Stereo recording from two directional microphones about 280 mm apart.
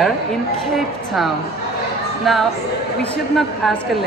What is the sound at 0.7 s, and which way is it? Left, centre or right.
A woman's voice, centre.